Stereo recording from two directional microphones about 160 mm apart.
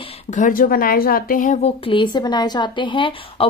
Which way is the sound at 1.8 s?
30° left (ahead or behind).